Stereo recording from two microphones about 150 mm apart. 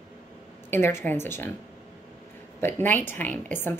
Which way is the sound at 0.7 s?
15° left (ahead or behind).